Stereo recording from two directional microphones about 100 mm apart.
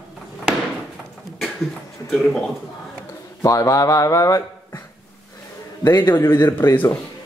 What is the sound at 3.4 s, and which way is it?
Speech, 35° left (ahead or behind).